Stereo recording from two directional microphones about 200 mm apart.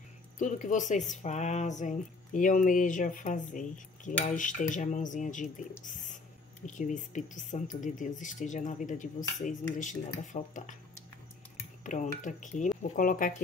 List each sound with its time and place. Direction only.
0.4 s speech: 40° left (ahead or behind)
11.8 s speech: 40° left (ahead or behind)